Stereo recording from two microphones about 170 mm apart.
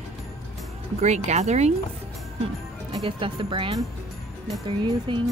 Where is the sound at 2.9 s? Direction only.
30° right (ahead or behind).